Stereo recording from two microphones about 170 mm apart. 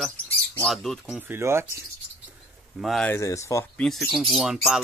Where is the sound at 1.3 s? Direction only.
15° right (ahead or behind).